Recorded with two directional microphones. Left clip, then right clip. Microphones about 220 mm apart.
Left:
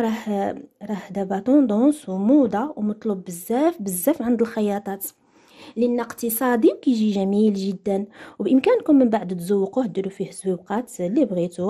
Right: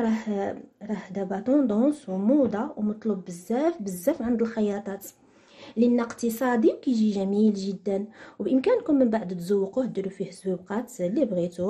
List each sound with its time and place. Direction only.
0.0 s speech: 45° left (ahead or behind)